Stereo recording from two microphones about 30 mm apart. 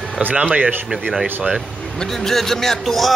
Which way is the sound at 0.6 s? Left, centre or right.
Right.